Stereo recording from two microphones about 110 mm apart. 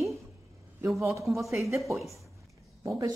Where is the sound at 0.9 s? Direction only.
25° right (ahead or behind).